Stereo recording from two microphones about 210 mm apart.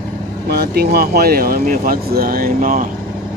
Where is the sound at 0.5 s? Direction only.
50° right (ahead or behind).